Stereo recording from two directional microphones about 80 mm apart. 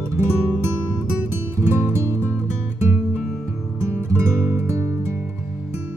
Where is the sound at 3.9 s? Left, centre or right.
Right.